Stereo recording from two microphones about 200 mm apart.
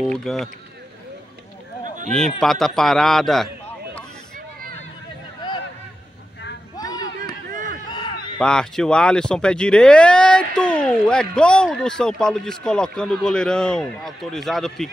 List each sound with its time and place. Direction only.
0.0 s speech: centre (ahead or behind)
2.0 s speech: centre (ahead or behind)
6.8 s a sound: 20° left (ahead or behind)
8.4 s speech: 5° left (ahead or behind)